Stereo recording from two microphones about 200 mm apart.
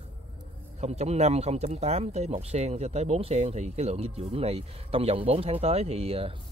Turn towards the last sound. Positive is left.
turn(degrees=-30)  # may be behind; listen again after turning